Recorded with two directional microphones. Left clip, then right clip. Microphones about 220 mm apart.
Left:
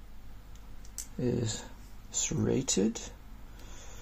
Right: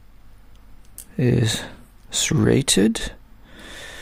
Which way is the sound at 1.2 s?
50° right (ahead or behind).